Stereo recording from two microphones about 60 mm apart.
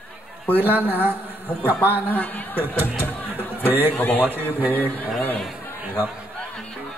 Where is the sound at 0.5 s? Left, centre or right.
Right.